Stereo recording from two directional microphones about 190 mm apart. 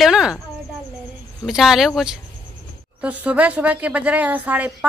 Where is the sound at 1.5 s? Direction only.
Centre (ahead or behind).